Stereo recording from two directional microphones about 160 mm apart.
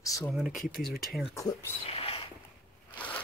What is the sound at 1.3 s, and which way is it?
Speech, 20° left (ahead or behind).